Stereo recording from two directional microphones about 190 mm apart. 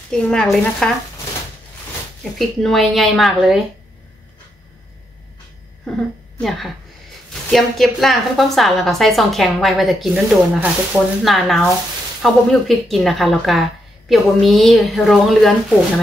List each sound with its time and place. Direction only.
0.1 s speech: 5° left (ahead or behind)
2.3 s speech: centre (ahead or behind)
5.9 s a woman's voice: centre (ahead or behind)